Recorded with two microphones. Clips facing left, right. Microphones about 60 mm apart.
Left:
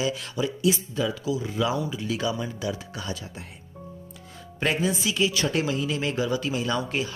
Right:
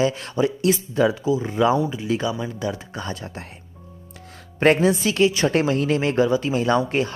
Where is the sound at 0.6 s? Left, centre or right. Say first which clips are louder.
Right 4 dB; right.